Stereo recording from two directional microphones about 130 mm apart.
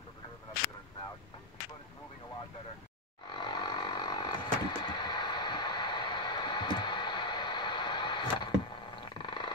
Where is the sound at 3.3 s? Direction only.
35° left (ahead or behind).